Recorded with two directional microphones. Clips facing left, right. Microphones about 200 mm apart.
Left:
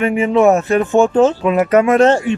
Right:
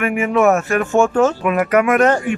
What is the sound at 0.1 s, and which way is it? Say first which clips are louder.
Speech: left 3 dB; 30° left (ahead or behind).